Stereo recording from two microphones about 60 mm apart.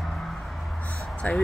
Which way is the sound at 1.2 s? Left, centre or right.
Left.